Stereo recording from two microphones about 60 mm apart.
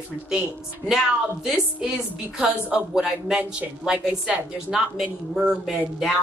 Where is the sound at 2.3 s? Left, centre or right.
Centre.